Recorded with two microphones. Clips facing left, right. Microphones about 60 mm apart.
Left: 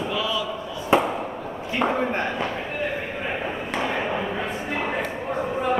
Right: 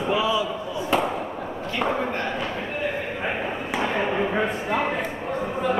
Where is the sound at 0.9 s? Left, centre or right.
Left.